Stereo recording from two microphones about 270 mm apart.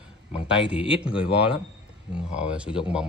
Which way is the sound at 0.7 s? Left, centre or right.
Centre.